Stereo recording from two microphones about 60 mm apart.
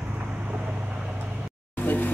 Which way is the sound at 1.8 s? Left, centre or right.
Left.